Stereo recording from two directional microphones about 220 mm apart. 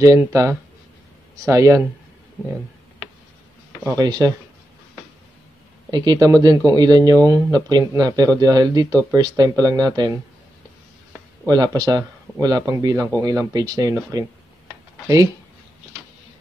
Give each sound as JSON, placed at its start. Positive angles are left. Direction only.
{"t": 0.0, "sound": "speech", "side_deg": -15}
{"t": 3.8, "sound": "speech", "side_deg": -15}
{"t": 5.9, "sound": "speech", "side_deg": -20}
{"t": 11.4, "sound": "speech", "side_deg": -15}